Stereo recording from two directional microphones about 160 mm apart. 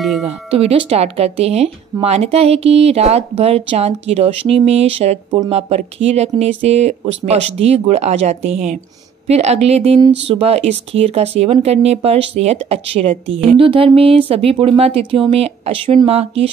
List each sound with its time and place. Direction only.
0.5 s speech: 35° right (ahead or behind)